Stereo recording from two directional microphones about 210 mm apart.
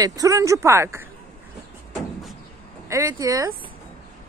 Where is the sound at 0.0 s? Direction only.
15° right (ahead or behind).